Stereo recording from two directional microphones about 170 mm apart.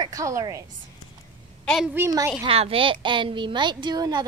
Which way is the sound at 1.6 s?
Centre (ahead or behind).